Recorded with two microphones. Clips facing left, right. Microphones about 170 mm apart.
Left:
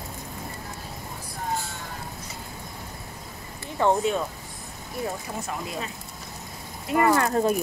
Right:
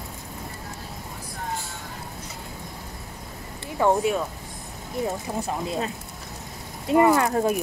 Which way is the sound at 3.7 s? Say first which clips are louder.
Right 1 dB; 10° right (ahead or behind).